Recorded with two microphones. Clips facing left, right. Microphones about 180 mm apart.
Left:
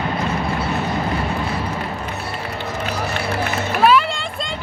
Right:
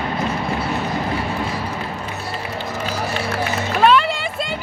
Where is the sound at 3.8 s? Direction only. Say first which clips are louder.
Even; 5° left (ahead or behind).